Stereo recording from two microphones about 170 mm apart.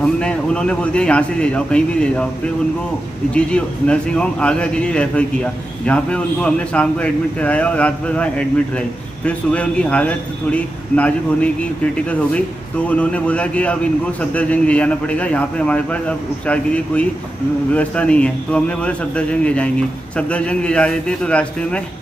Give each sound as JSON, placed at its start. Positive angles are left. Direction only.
{"t": 0.0, "sound": "a man's voice", "side_deg": 5}
{"t": 3.3, "sound": "a man's voice", "side_deg": 5}